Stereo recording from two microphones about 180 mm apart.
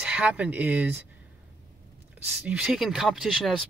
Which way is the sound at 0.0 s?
5° right (ahead or behind).